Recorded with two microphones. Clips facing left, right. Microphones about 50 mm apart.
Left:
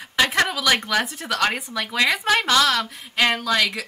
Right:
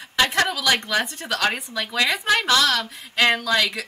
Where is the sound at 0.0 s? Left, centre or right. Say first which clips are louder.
Left 1 dB; centre.